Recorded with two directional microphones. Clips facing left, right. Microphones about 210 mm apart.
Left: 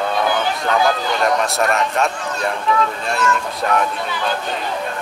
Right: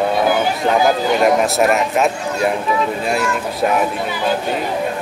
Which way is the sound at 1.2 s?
5° right (ahead or behind).